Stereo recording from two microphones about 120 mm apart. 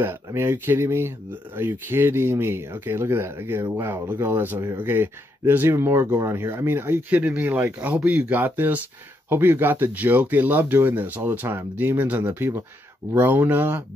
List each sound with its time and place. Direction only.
0.0 s speech: 20° right (ahead or behind)